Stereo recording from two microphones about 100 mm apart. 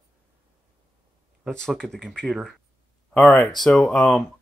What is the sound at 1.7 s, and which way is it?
Speech, 5° left (ahead or behind).